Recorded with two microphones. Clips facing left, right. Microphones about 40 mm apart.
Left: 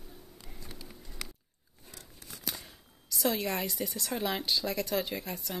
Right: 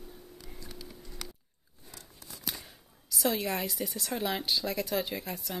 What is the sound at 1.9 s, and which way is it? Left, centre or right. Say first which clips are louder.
Tearing: even; left.